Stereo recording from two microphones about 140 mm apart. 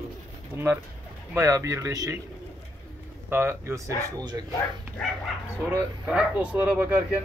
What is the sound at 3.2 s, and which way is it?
Speech, 15° right (ahead or behind).